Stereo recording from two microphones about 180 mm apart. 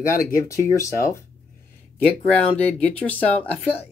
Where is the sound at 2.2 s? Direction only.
10° left (ahead or behind).